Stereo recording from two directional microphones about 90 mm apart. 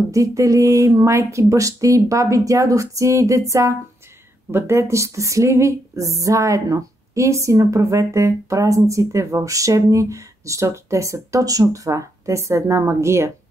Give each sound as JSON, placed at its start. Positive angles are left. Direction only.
{"t": 0.1, "sound": "speech", "side_deg": -35}